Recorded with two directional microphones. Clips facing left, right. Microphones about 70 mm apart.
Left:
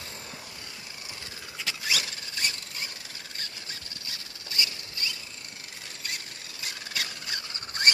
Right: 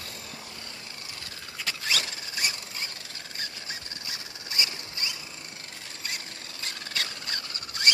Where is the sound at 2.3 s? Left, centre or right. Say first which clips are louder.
Right 1 dB; centre.